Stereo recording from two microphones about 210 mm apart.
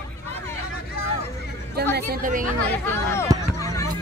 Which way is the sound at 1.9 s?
40° right (ahead or behind).